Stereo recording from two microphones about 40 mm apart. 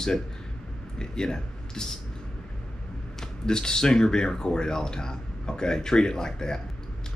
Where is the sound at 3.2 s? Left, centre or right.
Centre.